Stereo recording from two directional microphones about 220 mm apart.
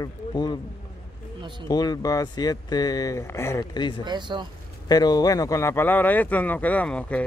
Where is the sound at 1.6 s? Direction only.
20° left (ahead or behind).